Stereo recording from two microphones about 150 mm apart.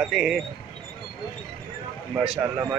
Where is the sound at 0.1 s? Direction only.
Centre (ahead or behind).